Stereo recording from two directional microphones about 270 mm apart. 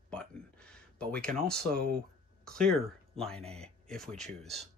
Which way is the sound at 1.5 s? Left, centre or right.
Right.